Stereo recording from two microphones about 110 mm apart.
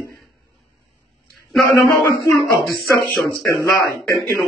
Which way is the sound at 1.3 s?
Centre (ahead or behind).